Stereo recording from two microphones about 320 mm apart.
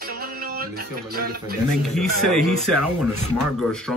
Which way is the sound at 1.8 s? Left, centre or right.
Centre.